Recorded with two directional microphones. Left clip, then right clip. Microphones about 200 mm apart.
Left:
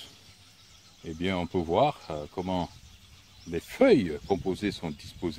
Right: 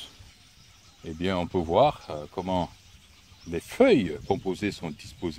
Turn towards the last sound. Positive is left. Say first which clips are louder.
# even
turn(degrees=-30)  # may be behind; listen again after turning